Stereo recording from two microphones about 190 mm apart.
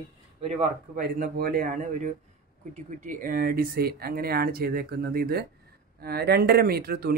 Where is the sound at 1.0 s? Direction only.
50° right (ahead or behind).